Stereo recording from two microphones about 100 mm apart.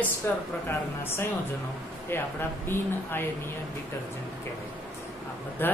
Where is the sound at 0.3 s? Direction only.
25° left (ahead or behind).